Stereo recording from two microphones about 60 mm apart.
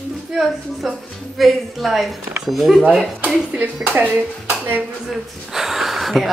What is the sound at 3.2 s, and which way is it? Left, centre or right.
Speech, centre.